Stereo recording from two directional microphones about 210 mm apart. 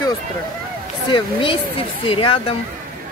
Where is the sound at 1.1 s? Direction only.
25° left (ahead or behind).